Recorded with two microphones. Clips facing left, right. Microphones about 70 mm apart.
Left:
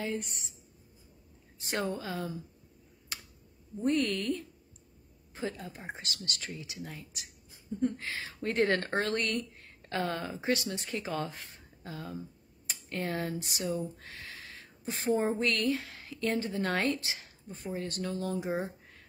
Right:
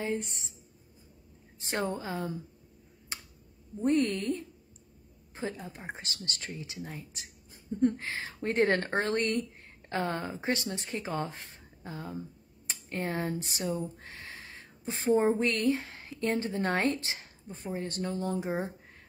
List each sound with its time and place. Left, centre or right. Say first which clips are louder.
0.0 s speech: right 2 dB; right
1.6 s speech: right 1 dB; right
3.1 s finger snapping: right 1 dB; right
3.8 s speech: right 2 dB; right